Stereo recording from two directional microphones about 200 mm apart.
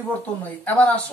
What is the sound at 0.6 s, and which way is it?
Speech, 10° left (ahead or behind).